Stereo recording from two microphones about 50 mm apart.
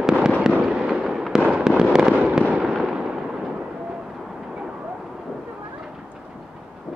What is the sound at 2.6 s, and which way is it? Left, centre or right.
Fireworks, centre.